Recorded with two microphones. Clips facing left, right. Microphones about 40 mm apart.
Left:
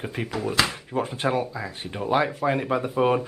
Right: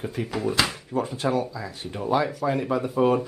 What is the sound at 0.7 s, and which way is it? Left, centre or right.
Speech, left.